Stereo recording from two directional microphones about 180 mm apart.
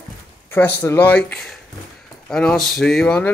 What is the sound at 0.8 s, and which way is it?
Speech, 15° left (ahead or behind).